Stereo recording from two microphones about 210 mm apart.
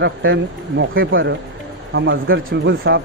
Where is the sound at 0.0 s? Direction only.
65° right (ahead or behind).